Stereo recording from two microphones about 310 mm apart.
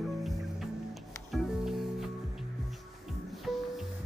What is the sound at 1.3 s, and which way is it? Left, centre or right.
Music, centre.